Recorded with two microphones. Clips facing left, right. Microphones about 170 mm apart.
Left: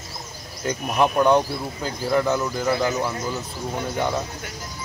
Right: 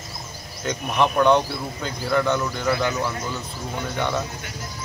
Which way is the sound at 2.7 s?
20° left (ahead or behind).